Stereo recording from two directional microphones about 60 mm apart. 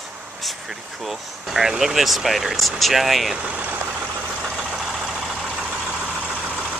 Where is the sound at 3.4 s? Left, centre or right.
Right.